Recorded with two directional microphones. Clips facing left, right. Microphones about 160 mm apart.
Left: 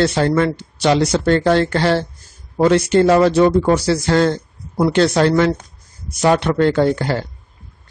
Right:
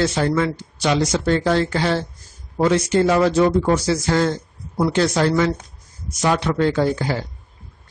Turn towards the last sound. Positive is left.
turn(degrees=60)  # may be behind; listen again after turning